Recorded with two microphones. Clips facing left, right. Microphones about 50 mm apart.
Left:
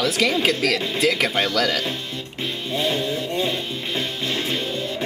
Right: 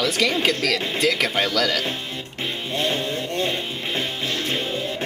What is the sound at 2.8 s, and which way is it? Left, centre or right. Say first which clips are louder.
Music: left 1 dB; centre.